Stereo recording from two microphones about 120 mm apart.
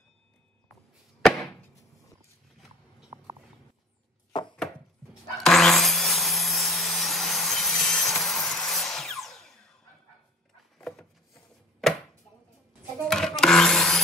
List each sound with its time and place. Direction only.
4.3 s chopping: 40° left (ahead or behind)
5.4 s wood: centre (ahead or behind)
10.8 s a sound: 5° left (ahead or behind)
11.8 s chopping: centre (ahead or behind)
13.1 s wood: 5° left (ahead or behind)